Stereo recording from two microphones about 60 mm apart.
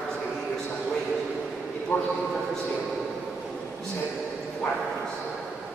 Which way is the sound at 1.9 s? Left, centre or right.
Left.